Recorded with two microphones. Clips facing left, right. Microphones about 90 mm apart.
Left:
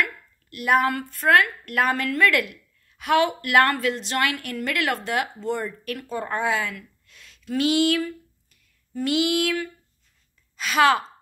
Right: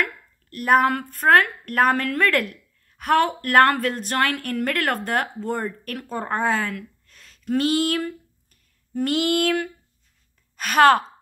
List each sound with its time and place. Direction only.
0.0 s a woman's voice: 45° right (ahead or behind)